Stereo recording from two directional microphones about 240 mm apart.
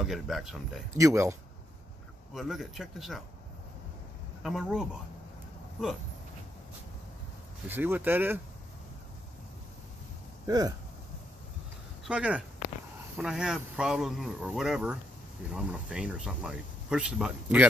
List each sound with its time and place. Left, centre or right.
0.0 s speech: centre
0.9 s speech: centre
2.3 s speech: centre
4.4 s speech: centre
7.6 s speech: centre
10.4 s speech: centre
12.0 s speech: centre